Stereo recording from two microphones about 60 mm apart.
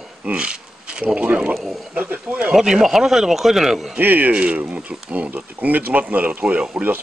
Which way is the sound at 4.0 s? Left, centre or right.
Right.